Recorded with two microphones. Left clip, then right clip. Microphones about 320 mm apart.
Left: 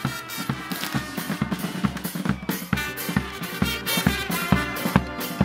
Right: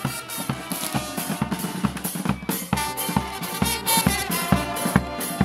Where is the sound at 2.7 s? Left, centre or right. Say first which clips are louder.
Right 3 dB; centre.